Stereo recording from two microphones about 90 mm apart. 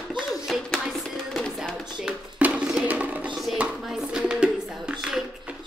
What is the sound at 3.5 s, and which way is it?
Chopping, 15° right (ahead or behind).